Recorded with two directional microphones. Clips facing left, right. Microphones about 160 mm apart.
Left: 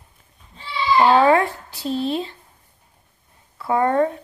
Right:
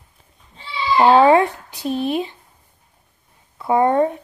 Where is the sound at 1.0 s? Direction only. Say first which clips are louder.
Right 3 dB; 20° right (ahead or behind).